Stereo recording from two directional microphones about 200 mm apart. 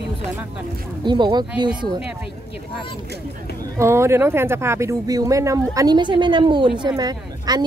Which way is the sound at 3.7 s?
15° right (ahead or behind).